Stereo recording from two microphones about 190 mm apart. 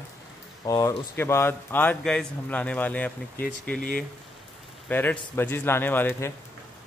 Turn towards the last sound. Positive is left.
turn(degrees=15)  # may be behind; listen again after turning